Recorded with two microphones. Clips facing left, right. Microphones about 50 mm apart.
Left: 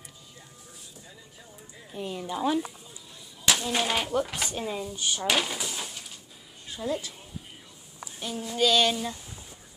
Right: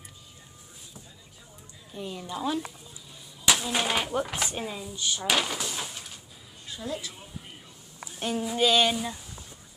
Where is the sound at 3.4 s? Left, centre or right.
Centre.